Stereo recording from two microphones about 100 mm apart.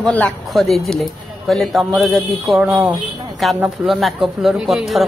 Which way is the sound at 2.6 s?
15° right (ahead or behind).